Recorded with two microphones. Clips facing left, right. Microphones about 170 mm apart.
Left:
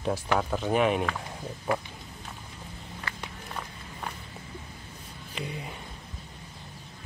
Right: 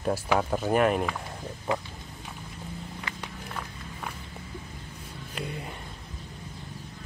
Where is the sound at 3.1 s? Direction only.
15° right (ahead or behind).